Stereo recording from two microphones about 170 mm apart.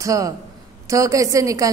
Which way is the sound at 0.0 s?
20° right (ahead or behind).